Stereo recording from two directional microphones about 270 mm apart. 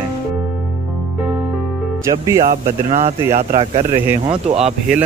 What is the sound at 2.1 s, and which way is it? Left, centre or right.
Speech, centre.